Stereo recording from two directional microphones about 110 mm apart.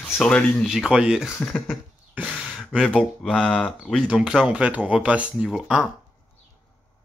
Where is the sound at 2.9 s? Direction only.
Centre (ahead or behind).